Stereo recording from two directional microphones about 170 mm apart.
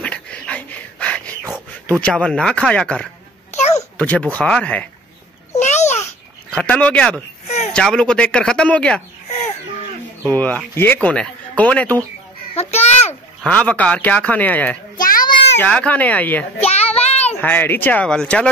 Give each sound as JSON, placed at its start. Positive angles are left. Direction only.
{"t": 0.0, "sound": "a sound", "side_deg": 5}
{"t": 1.9, "sound": "speech", "side_deg": 5}
{"t": 5.5, "sound": "babbling", "side_deg": 40}
{"t": 6.5, "sound": "speech", "side_deg": 10}
{"t": 7.4, "sound": "a sound", "side_deg": 40}
{"t": 7.7, "sound": "speech", "side_deg": 5}
{"t": 10.2, "sound": "speech", "side_deg": 10}
{"t": 12.5, "sound": "a child's voice", "side_deg": 40}
{"t": 13.4, "sound": "speech", "side_deg": 5}
{"t": 15.0, "sound": "a sound", "side_deg": 55}
{"t": 15.6, "sound": "speech", "side_deg": 10}
{"t": 16.6, "sound": "child singing", "side_deg": 35}
{"t": 17.4, "sound": "speech", "side_deg": 10}